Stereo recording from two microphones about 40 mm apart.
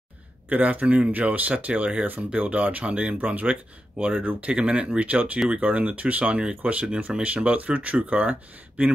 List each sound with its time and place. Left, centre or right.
0.5 s speech: right
1.5 s speech: right
2.3 s speech: right
4.2 s speech: right
4.5 s speech: right